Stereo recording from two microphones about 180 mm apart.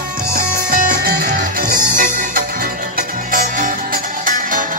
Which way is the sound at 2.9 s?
50° right (ahead or behind).